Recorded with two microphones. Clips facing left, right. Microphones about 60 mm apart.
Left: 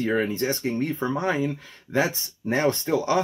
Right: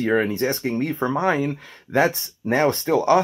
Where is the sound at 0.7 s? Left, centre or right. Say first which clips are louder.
Right 3 dB; right.